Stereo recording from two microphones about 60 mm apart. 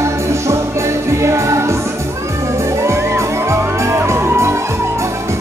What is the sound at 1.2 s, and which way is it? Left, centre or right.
Music, right.